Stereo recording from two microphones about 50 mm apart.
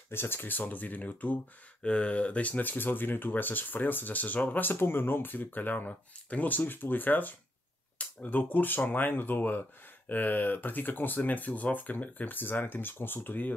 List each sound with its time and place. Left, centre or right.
0.1 s speech: left
1.8 s speech: left